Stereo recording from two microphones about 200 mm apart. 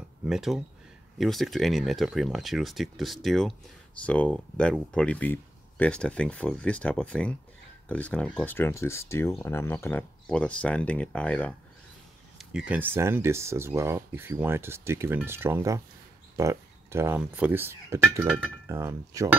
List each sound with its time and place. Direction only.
0.2 s speech: centre (ahead or behind)
12.4 s speech: 5° right (ahead or behind)